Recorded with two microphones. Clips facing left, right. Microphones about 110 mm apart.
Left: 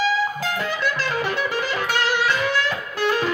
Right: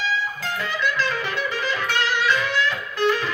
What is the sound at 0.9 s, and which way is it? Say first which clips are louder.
Music: left 1 dB; 45° left (ahead or behind).